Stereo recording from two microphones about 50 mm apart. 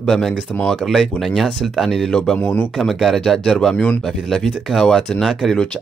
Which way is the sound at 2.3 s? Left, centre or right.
Left.